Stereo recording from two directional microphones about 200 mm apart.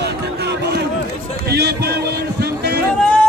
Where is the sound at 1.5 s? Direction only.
55° right (ahead or behind).